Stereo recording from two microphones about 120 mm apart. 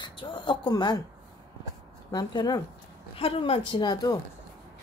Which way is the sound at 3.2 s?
50° left (ahead or behind).